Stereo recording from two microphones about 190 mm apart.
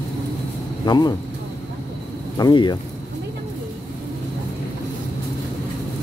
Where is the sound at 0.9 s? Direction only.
20° left (ahead or behind).